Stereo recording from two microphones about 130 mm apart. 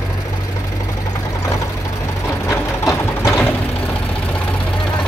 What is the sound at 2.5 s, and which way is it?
Sewing machine, 25° left (ahead or behind).